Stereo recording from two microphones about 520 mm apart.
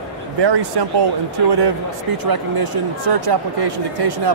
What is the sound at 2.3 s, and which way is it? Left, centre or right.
Speech, right.